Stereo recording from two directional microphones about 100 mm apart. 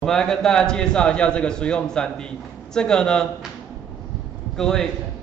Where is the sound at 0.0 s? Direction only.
5° left (ahead or behind).